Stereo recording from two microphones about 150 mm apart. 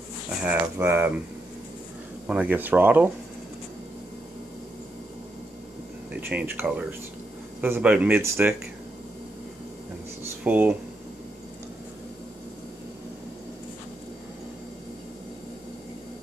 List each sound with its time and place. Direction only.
0.5 s speech: 15° right (ahead or behind)
2.2 s speech: 10° right (ahead or behind)
6.2 s speech: 15° right (ahead or behind)
10.2 s a sound: 10° right (ahead or behind)